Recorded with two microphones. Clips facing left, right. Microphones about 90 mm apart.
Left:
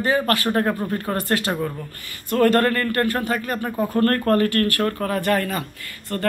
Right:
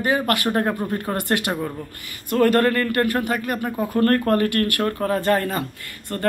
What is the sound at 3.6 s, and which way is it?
Speech, 5° right (ahead or behind).